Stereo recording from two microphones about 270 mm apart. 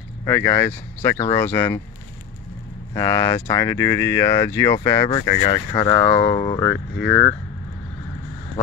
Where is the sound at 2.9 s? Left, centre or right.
Centre.